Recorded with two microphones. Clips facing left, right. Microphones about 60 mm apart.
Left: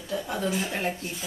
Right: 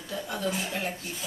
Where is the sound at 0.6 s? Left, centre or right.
Left.